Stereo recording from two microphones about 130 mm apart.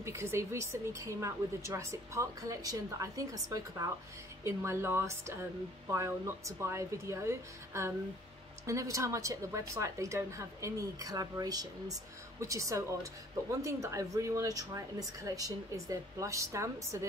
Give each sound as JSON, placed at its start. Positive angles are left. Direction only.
{"t": 0.0, "sound": "a woman's voice", "side_deg": -20}